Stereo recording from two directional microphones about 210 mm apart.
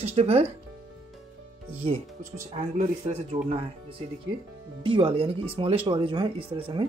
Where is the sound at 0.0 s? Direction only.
30° right (ahead or behind).